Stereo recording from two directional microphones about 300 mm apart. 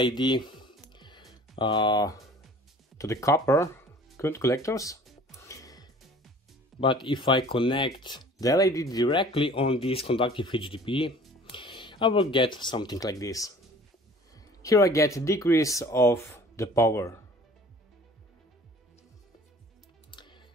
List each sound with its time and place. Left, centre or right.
0.0 s music: centre
1.6 s speech: centre
5.3 s music: centre
6.8 s speech: centre
20.1 s music: centre